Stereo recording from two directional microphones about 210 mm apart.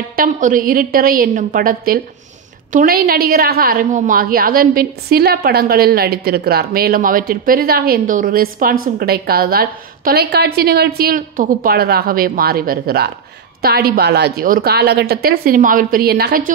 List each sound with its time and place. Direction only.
0.1 s a woman's voice: 40° right (ahead or behind)